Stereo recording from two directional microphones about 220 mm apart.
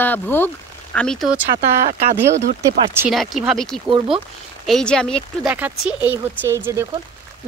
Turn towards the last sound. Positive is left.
turn(degrees=-10)  # may be behind; listen again after turning